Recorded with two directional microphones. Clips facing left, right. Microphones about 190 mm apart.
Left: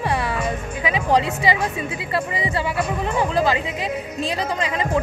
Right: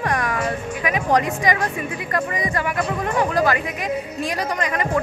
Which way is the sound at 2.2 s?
10° left (ahead or behind).